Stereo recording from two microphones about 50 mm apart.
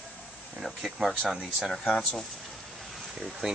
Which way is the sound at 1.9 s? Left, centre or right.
Centre.